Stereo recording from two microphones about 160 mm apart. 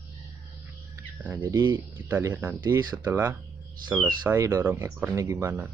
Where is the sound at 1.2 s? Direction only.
10° right (ahead or behind).